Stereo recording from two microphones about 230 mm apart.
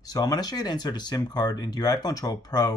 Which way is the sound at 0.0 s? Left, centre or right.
Centre.